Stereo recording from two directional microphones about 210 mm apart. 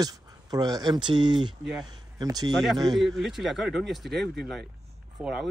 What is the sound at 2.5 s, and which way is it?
Speech, centre (ahead or behind).